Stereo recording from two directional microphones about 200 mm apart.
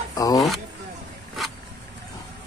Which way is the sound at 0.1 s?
15° left (ahead or behind).